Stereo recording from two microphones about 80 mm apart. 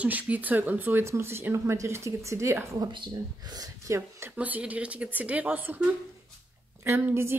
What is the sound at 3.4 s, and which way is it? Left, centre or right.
Speech, right.